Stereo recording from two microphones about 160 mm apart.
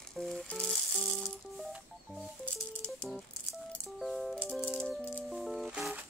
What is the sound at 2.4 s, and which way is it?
Rattle, 5° left (ahead or behind).